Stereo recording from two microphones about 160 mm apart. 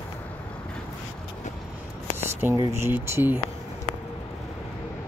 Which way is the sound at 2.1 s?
15° right (ahead or behind).